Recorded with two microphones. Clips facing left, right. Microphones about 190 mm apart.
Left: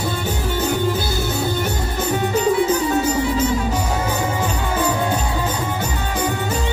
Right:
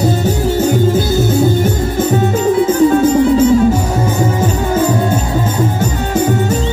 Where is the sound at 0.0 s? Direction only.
45° right (ahead or behind).